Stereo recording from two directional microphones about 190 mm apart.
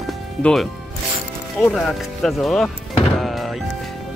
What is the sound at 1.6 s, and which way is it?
Speech, 5° left (ahead or behind).